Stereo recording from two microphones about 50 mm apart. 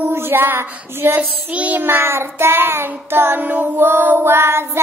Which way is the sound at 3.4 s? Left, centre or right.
Right.